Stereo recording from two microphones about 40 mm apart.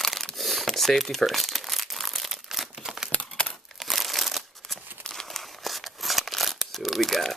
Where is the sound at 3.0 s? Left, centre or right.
Left.